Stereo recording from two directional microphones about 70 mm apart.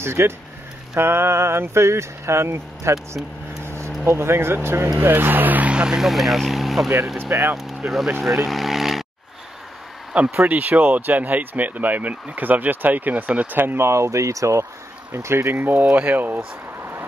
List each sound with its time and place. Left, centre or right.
0.0 s speech: right
3.6 s vehicle: right
4.0 s speech: right; by 6.9 s centre
7.2 s speech: right
7.5 s speech: centre
10.4 s speech: right
15.5 s speech: right